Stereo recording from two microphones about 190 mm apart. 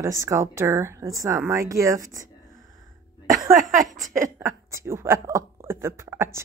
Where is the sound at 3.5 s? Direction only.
45° right (ahead or behind).